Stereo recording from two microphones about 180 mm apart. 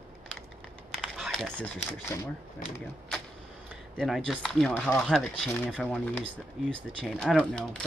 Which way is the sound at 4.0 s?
Centre (ahead or behind).